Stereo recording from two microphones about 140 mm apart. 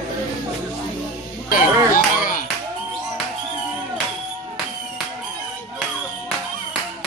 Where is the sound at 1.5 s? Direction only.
75° left (ahead or behind).